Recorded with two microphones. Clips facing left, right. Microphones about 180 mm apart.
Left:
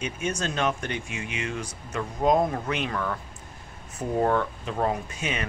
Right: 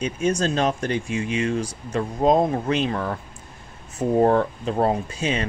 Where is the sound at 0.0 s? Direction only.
35° right (ahead or behind).